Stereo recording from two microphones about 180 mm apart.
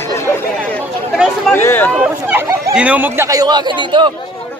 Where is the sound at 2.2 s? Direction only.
10° right (ahead or behind); by 4.1 s 25° right (ahead or behind).